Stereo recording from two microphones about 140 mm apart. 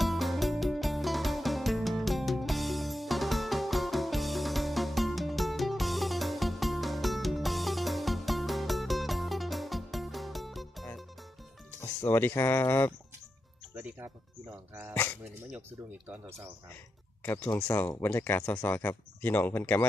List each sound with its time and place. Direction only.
0.0 s music: centre (ahead or behind)
12.0 s speech: 15° left (ahead or behind)
13.7 s speech: 15° right (ahead or behind)
17.2 s speech: 15° left (ahead or behind)